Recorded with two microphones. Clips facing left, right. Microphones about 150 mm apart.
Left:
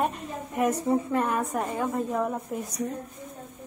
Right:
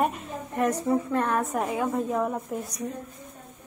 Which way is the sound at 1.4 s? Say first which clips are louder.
Right 1 dB; centre (ahead or behind).